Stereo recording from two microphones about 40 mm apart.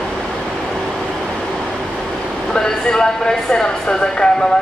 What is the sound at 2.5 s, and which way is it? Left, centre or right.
Speech, centre.